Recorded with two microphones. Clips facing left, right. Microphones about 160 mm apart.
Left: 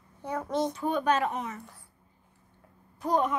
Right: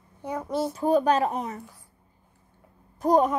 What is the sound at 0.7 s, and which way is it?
Speech, 35° right (ahead or behind).